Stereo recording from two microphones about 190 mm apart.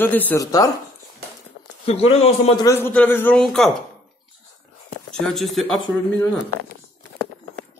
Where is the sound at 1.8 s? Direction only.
30° left (ahead or behind).